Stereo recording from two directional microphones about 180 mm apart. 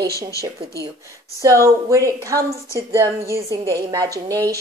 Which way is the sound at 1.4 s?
15° right (ahead or behind).